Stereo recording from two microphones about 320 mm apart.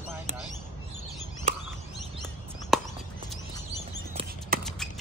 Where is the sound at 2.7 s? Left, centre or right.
Centre.